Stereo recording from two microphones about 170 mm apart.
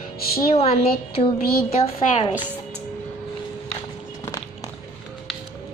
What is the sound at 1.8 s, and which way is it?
Speech, 35° left (ahead or behind).